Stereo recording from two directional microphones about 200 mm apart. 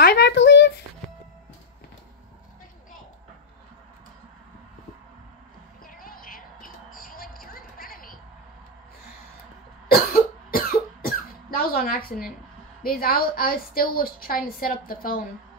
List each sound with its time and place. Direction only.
0.0 s a sound: 55° left (ahead or behind)
5.9 s music: 45° left (ahead or behind)
10.1 s cough: 45° left (ahead or behind)
12.8 s a woman's voice: 50° left (ahead or behind)